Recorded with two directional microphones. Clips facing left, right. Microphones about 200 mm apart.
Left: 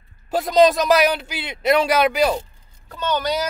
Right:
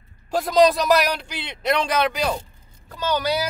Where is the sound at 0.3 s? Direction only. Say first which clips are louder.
Left 2 dB; centre (ahead or behind).